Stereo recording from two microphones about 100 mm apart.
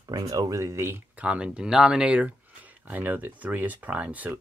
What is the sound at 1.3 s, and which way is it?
Speech, 10° right (ahead or behind).